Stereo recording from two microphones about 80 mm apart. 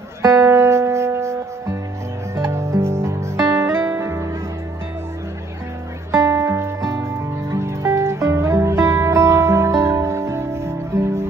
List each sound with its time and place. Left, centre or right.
0.2 s music: right
6.1 s music: right